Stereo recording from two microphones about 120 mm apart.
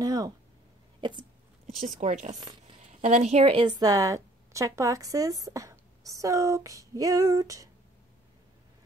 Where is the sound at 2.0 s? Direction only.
90° right.